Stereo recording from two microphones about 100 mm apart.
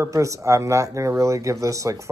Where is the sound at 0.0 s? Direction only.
30° right (ahead or behind).